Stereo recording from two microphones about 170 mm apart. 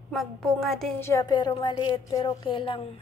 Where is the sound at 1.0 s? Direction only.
20° left (ahead or behind).